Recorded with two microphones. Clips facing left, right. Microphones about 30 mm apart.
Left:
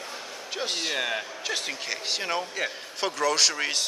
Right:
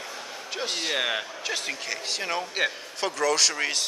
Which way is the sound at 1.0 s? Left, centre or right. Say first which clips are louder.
Right 2 dB; centre.